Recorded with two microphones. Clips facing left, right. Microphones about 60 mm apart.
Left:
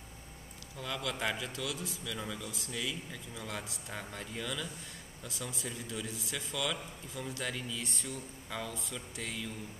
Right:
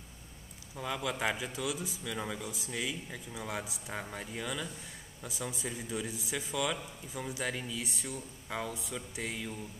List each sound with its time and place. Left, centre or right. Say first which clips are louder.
0.7 s a man's voice: right 2 dB; centre